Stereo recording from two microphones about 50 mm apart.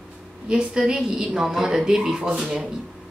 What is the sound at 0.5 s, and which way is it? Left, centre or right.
A woman's voice, centre.